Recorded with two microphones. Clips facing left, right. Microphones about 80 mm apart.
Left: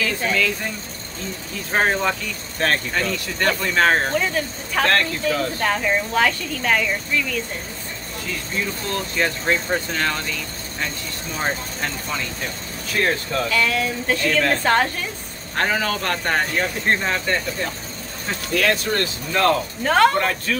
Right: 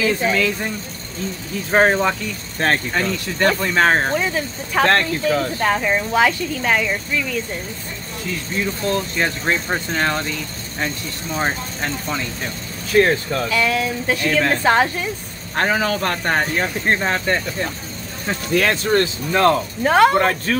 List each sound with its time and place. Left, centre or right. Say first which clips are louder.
0.0 s speech: right 4 dB; centre
1.7 s speech: right 4 dB; right
8.9 s speech: right 2 dB; right
11.3 s speech: right 3 dB; centre
18.5 s speech: right 3 dB; right
20.2 s speech: right 4 dB; right